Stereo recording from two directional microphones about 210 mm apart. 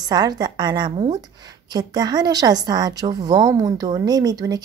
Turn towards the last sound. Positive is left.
turn(degrees=-15)  # may be behind; listen again after turning